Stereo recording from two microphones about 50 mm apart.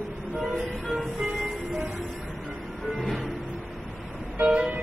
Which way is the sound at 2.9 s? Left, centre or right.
Centre.